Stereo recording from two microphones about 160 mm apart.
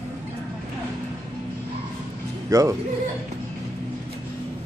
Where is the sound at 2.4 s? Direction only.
20° right (ahead or behind).